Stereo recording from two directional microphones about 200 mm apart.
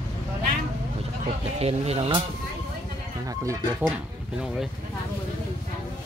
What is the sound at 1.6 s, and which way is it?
Speech, 30° right (ahead or behind).